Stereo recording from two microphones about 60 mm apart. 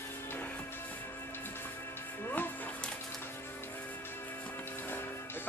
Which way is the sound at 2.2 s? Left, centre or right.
Left.